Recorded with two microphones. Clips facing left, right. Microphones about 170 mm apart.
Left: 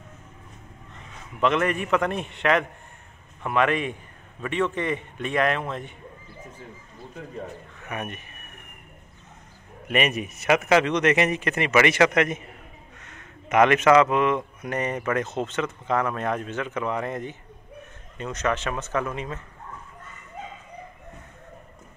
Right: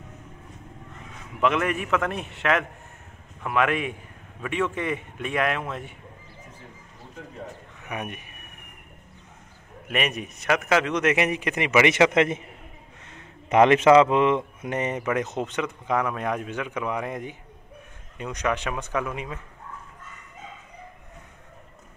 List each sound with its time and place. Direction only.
1.4 s a man's voice: 5° right (ahead or behind)
7.8 s speech: 15° right (ahead or behind)
9.8 s speech: centre (ahead or behind)